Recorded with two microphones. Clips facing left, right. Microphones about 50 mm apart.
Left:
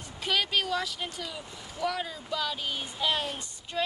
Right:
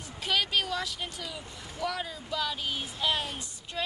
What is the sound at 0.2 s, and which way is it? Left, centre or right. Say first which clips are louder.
Speech: even; centre.